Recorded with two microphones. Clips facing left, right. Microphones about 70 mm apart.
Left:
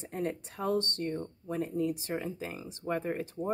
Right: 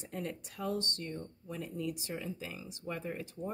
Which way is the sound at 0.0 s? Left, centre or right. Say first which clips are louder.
Left 6 dB; left.